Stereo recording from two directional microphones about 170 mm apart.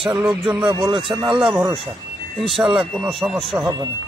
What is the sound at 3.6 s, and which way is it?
Speech, 15° right (ahead or behind).